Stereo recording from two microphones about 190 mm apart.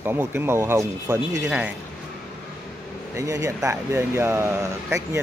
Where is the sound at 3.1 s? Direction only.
15° right (ahead or behind).